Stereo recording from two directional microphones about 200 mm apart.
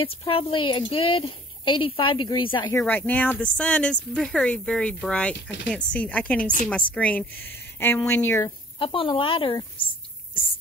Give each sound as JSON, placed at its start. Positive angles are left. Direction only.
{"t": 0.0, "sound": "a woman's voice", "side_deg": 30}
{"t": 2.7, "sound": "speech", "side_deg": 10}
{"t": 8.5, "sound": "a woman's voice", "side_deg": 25}